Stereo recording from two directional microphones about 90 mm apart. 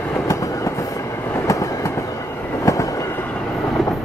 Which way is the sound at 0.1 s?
35° left (ahead or behind).